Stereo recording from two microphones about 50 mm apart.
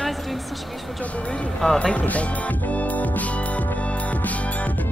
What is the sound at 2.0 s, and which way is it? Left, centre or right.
Music, left.